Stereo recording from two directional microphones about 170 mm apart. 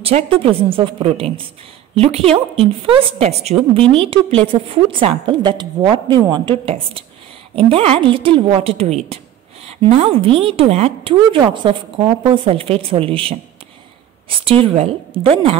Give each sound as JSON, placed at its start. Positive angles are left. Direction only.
{"t": 0.0, "sound": "a woman's voice", "side_deg": -35}
{"t": 14.4, "sound": "a woman's voice", "side_deg": -30}